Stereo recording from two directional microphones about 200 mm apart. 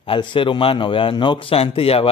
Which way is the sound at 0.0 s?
25° left (ahead or behind).